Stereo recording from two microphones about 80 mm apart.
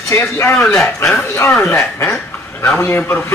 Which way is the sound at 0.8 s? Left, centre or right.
Centre.